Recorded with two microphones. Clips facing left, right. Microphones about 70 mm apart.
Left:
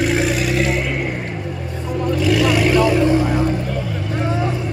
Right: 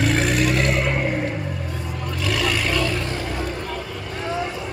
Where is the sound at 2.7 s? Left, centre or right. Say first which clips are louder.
Left 9 dB; centre.